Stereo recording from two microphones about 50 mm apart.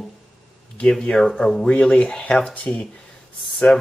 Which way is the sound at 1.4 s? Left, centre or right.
Centre.